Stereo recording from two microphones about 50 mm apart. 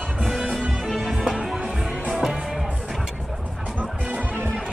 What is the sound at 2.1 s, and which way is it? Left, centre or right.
Music, centre.